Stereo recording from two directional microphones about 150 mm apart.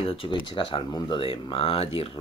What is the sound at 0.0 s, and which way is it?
Speech, 40° left (ahead or behind).